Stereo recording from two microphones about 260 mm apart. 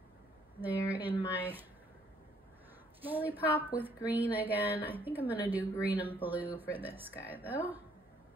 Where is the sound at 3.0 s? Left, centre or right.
Centre.